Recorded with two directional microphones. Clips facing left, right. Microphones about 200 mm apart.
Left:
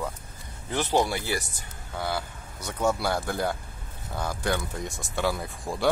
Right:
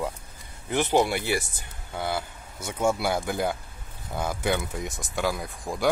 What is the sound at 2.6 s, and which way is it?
Speech, 10° right (ahead or behind).